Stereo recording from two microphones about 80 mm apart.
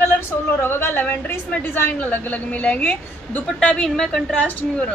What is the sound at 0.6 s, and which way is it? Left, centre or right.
A woman's voice, left.